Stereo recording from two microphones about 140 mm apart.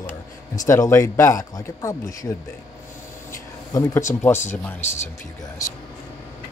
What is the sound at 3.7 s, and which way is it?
Speech, 25° left (ahead or behind).